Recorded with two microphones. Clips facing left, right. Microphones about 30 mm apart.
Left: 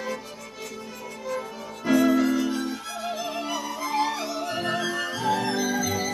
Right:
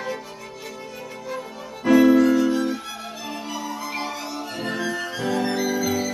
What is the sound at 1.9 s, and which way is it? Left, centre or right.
Music, centre.